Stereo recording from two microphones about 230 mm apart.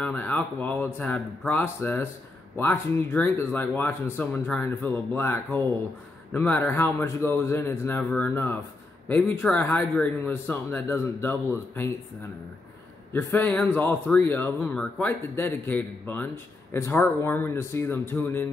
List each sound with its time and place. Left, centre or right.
0.0 s speech: centre
13.1 s speech: centre